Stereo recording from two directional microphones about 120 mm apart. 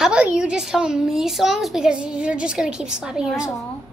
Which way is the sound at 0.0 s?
10° right (ahead or behind).